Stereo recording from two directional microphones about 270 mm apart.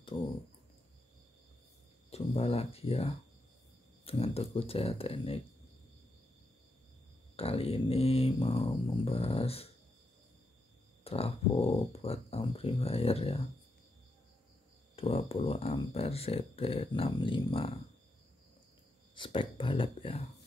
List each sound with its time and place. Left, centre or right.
0.1 s speech: centre
2.0 s speech: left
7.3 s speech: left
11.1 s speech: left
15.0 s speech: left
19.1 s speech: centre